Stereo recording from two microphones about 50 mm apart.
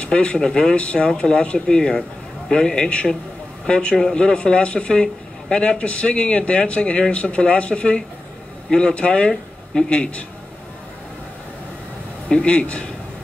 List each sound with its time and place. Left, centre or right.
0.0 s a man's voice: left
12.3 s a man's voice: left